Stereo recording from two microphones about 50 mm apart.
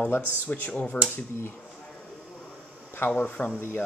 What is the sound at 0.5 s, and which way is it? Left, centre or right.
Speech, left.